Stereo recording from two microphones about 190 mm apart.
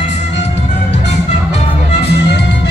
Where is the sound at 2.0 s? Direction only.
60° left (ahead or behind).